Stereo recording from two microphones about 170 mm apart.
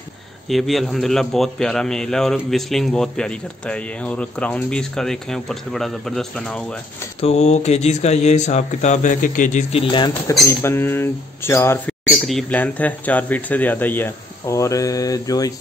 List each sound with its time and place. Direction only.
0.5 s a man's voice: centre (ahead or behind)
7.2 s speech: 40° left (ahead or behind)
10.4 s speech: 15° left (ahead or behind)
12.1 s speech: centre (ahead or behind); by 15.5 s 20° left (ahead or behind)